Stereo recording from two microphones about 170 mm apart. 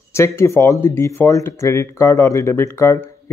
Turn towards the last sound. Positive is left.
turn(degrees=15)  # may be behind; listen again after turning